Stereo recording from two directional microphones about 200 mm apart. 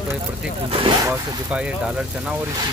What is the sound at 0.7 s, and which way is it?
Speech, 25° right (ahead or behind).